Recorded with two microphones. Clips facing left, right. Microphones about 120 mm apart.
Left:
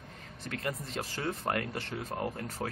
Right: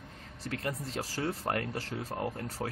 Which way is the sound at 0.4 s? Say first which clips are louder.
Right 1 dB; 35° right (ahead or behind).